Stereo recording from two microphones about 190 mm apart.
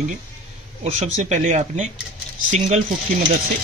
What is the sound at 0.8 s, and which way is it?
Speech, 35° right (ahead or behind).